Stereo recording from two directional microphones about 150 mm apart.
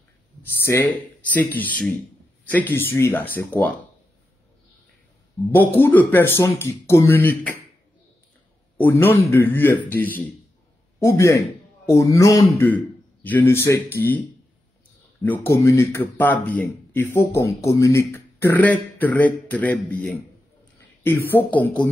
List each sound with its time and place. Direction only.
0.4 s speech: 15° left (ahead or behind)
5.8 s speech: 15° left (ahead or behind)
8.7 s speech: 15° left (ahead or behind)
12.5 s a man's voice: 10° left (ahead or behind)
15.2 s speech: 15° left (ahead or behind)